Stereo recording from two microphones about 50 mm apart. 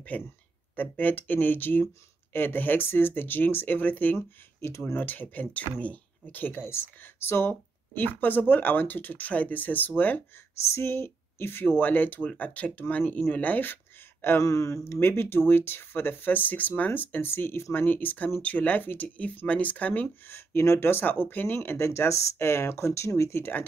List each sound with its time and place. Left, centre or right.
0.1 s speech: left
4.6 s speech: left
4.9 s speech: left
6.6 s speech: left
10.7 s speech: left
14.4 s speech: left
15.0 s speech: left
20.2 s speech: left
20.6 s speech: left
20.9 s speech: left
21.6 s speech: left